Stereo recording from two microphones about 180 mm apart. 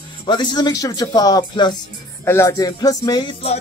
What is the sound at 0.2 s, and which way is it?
Speech, 25° left (ahead or behind).